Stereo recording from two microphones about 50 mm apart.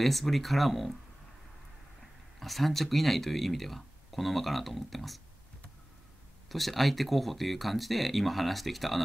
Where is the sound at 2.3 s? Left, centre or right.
Centre.